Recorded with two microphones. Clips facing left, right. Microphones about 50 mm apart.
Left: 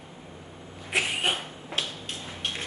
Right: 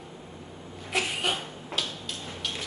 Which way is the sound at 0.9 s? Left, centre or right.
Left.